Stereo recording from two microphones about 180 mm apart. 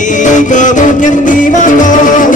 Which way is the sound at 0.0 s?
45° left (ahead or behind).